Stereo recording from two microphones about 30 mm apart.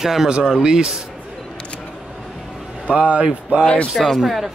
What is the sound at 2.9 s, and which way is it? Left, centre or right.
Speech, right.